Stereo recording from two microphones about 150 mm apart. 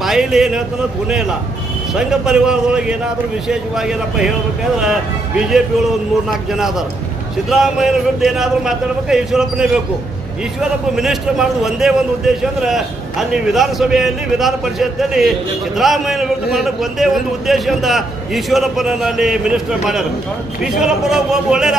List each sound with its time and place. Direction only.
0.0 s a man's voice: centre (ahead or behind)
2.0 s a man's voice: 5° right (ahead or behind)
7.4 s a man's voice: centre (ahead or behind)
13.3 s a man's voice: centre (ahead or behind)